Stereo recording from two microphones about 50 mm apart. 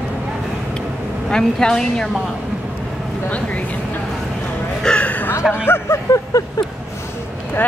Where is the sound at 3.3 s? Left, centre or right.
Left.